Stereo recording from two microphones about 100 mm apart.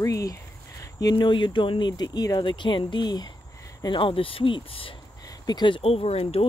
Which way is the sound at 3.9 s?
60° left (ahead or behind).